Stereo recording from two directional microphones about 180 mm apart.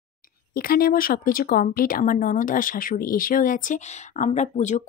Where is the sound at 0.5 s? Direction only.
55° left (ahead or behind).